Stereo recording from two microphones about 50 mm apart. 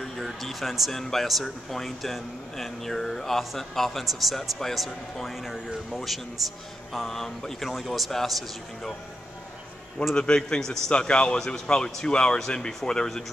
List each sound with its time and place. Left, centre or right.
0.0 s speech: centre
10.1 s speech: centre